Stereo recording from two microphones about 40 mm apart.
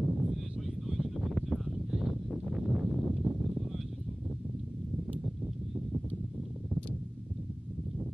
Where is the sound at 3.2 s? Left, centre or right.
Centre.